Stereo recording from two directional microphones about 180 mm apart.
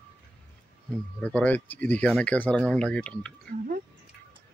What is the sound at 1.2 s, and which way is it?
Speech, 10° left (ahead or behind).